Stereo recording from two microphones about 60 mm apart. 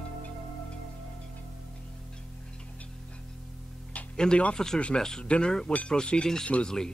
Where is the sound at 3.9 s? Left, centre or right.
Centre.